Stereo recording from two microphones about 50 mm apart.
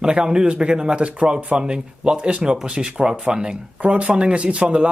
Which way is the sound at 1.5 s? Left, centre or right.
Centre.